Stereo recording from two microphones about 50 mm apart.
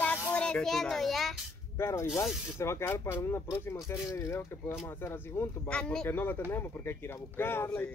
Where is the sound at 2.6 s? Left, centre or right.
Left.